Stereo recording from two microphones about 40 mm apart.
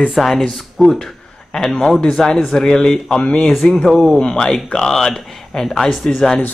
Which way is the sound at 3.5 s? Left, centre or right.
Centre.